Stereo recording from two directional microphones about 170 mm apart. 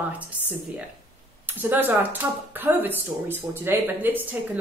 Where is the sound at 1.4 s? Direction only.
10° right (ahead or behind).